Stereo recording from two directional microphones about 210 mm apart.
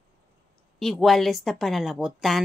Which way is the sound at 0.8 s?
Centre (ahead or behind).